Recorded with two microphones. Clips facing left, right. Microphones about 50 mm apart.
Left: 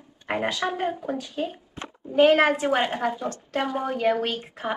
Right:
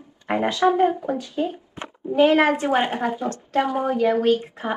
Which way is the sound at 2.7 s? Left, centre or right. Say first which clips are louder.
Right 2 dB; right.